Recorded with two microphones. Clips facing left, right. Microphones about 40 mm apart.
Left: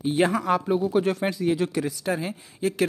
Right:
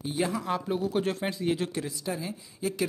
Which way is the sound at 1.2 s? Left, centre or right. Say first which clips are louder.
Left 5 dB; left.